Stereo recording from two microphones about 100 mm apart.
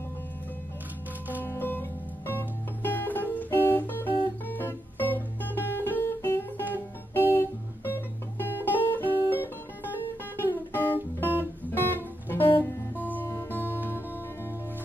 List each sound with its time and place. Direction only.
1.4 s music: 20° left (ahead or behind)
9.3 s guitar: 20° left (ahead or behind)
12.6 s music: 20° left (ahead or behind)